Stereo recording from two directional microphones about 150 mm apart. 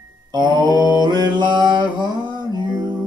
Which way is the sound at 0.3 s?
30° right (ahead or behind).